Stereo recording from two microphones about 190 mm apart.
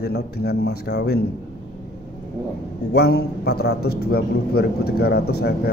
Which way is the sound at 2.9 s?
60° left (ahead or behind).